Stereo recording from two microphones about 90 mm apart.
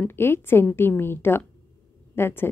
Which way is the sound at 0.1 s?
25° left (ahead or behind).